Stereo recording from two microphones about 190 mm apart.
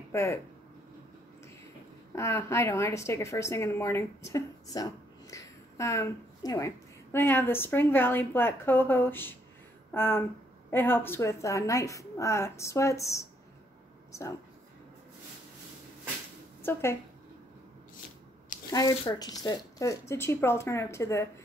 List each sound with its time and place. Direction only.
0.1 s speech: 15° left (ahead or behind)
2.1 s a woman's voice: 15° left (ahead or behind)
18.7 s a woman's voice: 20° left (ahead or behind)